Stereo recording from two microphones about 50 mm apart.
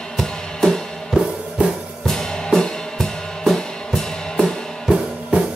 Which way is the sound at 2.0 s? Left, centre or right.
Centre.